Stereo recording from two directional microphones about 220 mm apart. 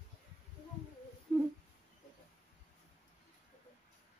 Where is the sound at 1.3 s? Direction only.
5° left (ahead or behind).